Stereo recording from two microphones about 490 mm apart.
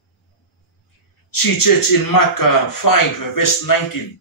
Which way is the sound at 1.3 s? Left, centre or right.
Left.